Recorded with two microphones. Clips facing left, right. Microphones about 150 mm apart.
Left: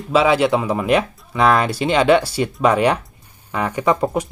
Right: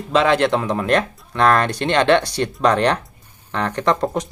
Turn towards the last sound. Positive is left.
turn(degrees=10)  # may be behind; listen again after turning